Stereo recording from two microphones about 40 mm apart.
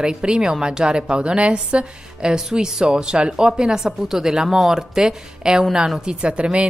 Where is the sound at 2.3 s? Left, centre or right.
Centre.